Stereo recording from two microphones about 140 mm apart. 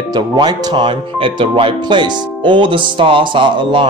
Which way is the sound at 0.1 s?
30° right (ahead or behind).